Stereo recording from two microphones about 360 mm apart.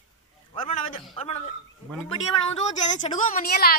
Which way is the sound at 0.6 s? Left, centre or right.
Centre.